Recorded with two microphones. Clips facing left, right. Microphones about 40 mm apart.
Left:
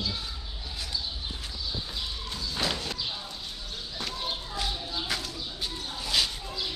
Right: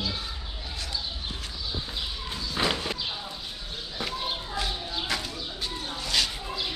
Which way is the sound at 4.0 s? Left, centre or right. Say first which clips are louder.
Right 3 dB; centre.